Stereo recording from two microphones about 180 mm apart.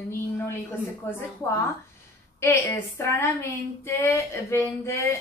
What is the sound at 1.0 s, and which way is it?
Speech, 10° left (ahead or behind).